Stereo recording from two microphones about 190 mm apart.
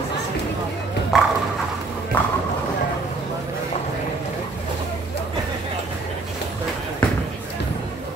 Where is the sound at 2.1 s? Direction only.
10° left (ahead or behind).